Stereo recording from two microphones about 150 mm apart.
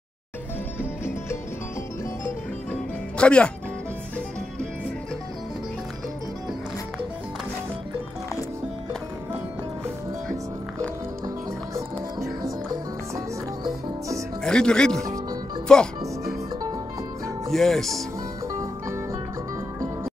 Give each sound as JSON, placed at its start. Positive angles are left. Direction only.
{"t": 0.7, "sound": "music", "side_deg": 15}
{"t": 11.2, "sound": "music", "side_deg": -20}
{"t": 14.4, "sound": "speech", "side_deg": 5}
{"t": 17.5, "sound": "speech", "side_deg": 0}